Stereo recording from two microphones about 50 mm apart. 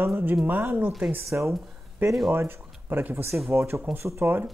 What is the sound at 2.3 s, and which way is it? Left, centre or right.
Speech, right.